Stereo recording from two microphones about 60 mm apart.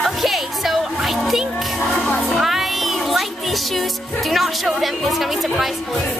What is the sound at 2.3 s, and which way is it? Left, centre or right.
Music, centre.